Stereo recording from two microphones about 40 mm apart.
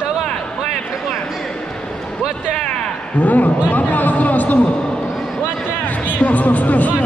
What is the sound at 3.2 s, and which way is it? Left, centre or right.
Speech, left.